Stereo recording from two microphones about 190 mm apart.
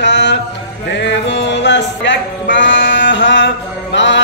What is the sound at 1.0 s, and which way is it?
Music, 70° left (ahead or behind).